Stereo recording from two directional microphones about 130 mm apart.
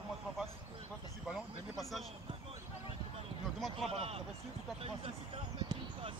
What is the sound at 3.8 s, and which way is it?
Speech, 50° right (ahead or behind).